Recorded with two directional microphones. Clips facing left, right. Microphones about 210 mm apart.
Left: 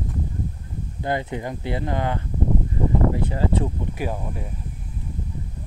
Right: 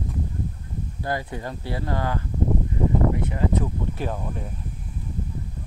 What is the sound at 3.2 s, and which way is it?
Speech, 30° left (ahead or behind).